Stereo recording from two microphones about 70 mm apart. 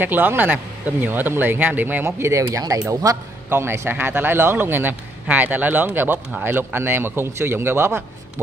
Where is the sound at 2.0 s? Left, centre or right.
Right.